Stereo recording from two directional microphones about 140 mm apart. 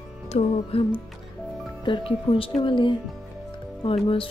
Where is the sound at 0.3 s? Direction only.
45° left (ahead or behind).